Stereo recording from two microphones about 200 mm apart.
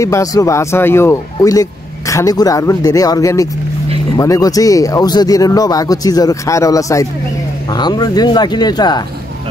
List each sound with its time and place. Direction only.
0.0 s speech: 15° left (ahead or behind)